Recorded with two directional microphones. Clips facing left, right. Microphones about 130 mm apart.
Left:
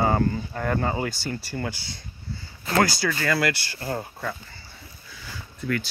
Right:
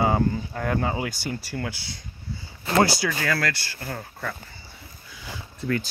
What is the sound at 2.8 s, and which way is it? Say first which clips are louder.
Speech: right 2 dB; 25° right (ahead or behind).